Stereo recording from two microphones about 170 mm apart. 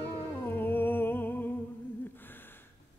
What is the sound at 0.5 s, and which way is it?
Music, 10° left (ahead or behind).